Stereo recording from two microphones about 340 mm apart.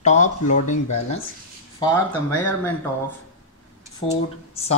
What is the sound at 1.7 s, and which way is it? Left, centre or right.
Speech, centre.